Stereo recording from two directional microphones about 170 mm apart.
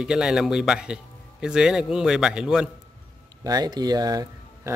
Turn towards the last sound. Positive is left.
turn(degrees=-20)  # may be behind; listen again after turning